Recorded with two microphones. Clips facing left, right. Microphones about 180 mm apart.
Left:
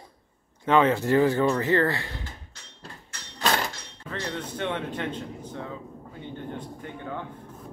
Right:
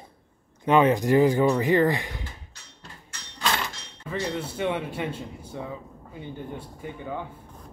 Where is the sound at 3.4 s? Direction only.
40° left (ahead or behind).